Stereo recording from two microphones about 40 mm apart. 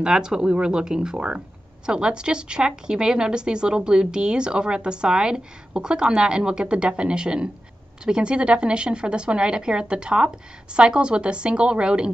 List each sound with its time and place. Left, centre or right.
0.0 s speech: centre